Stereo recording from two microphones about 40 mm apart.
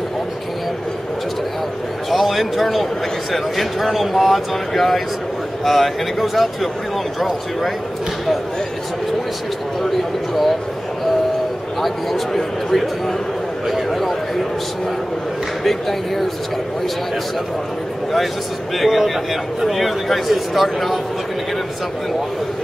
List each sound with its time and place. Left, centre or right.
2.0 s a man's voice: centre
11.8 s a man's voice: centre
15.6 s a man's voice: centre
18.8 s a man's voice: centre